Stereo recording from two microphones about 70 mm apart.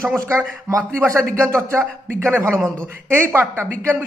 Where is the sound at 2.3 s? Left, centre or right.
Right.